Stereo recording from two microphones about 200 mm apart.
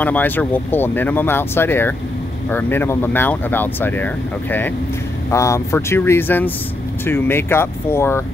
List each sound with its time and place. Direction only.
0.0 s speech: 10° left (ahead or behind)